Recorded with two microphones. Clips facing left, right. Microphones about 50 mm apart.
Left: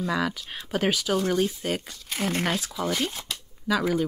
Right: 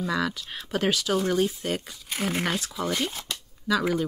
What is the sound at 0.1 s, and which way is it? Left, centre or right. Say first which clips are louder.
Speech: even; centre.